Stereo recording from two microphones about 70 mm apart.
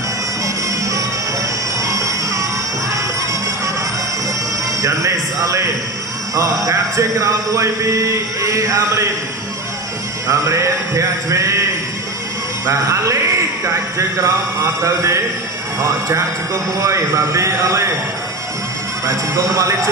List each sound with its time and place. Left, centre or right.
0.7 s music: right
4.8 s music: right
10.2 s music: right
19.0 s music: right